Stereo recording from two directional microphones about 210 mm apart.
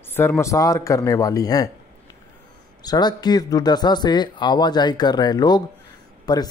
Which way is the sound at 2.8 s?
20° left (ahead or behind).